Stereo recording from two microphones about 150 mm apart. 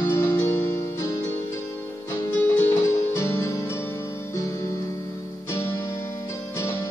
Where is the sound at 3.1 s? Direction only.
20° left (ahead or behind).